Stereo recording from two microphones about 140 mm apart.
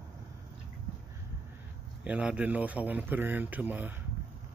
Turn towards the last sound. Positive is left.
turn(degrees=-10)  # may be behind; listen again after turning